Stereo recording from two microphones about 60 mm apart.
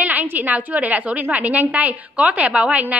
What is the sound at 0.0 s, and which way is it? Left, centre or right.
A woman's voice, right.